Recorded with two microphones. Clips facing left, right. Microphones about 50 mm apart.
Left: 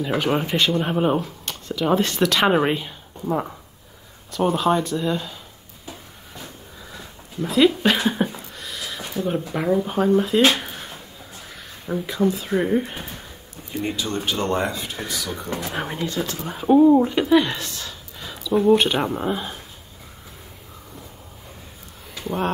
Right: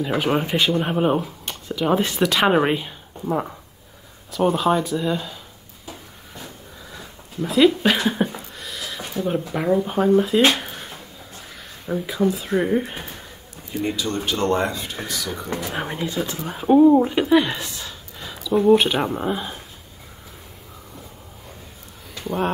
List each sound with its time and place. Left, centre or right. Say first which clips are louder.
0.0 s speech: right 1 dB; centre
6.9 s a sound: even; centre
8.5 s speech: left 1 dB; centre
10.5 s a sound: even; centre
11.9 s speech: even; centre
14.2 s speech: right 3 dB; centre
14.5 s speech: right 2 dB; centre